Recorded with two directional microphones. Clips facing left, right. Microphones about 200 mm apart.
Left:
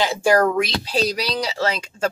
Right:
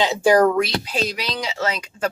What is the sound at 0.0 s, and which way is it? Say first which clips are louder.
Speech: right 2 dB; 20° right (ahead or behind).